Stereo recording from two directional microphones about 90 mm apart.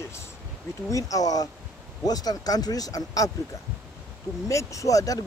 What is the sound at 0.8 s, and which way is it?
Speech, 40° left (ahead or behind).